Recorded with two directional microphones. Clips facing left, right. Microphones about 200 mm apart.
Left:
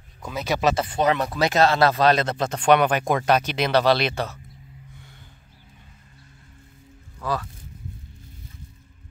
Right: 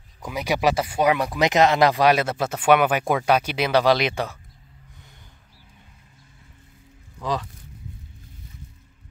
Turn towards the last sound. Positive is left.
turn(degrees=-15)  # may be behind; listen again after turning